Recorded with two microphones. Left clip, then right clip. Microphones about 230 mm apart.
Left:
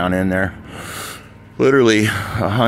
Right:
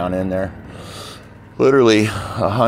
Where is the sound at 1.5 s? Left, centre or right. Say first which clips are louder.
Right 1 dB; centre.